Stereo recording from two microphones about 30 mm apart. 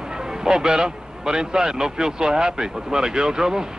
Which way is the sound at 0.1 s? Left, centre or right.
Right.